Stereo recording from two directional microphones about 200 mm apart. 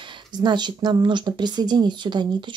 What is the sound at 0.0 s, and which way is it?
Speech, 20° right (ahead or behind).